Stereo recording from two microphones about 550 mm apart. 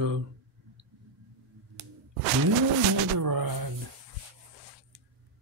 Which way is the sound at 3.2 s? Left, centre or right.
Right.